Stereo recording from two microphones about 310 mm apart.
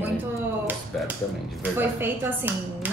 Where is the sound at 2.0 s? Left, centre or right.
Centre.